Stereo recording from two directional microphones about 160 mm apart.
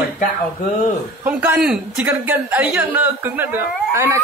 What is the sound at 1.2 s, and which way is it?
A woman's voice, 10° right (ahead or behind).